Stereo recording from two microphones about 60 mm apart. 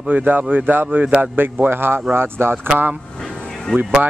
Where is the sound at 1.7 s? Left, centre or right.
Right.